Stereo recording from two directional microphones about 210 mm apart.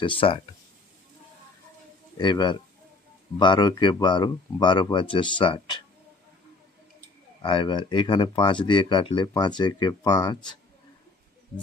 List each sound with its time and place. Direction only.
0.0 s speech: 25° left (ahead or behind)
2.1 s speech: 20° left (ahead or behind)
7.4 s speech: 20° left (ahead or behind)